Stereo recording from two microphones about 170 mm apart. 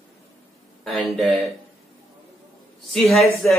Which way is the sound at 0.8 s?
Centre (ahead or behind).